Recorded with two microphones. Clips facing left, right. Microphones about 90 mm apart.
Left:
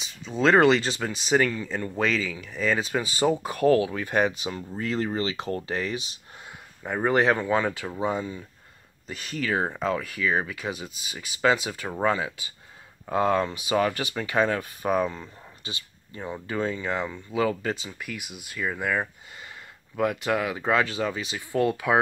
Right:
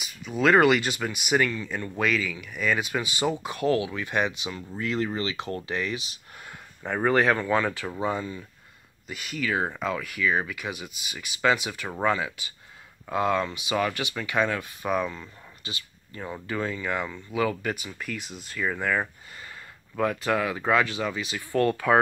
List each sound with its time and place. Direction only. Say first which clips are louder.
0.0 s speech: left 1 dB; 25° left (ahead or behind)
6.8 s speech: even; 5° left (ahead or behind)
7.1 s speech: even; 20° left (ahead or behind)
9.0 s speech: even; 35° left (ahead or behind)
17.9 s speech: right 2 dB; 15° left (ahead or behind)
20.0 s speech: even; 20° left (ahead or behind)
21.4 s speech: right 1 dB; 15° left (ahead or behind)